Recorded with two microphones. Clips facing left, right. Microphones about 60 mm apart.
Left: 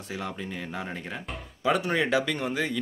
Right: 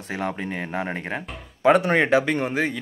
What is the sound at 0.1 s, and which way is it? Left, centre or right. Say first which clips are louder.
Speech: right 7 dB; right.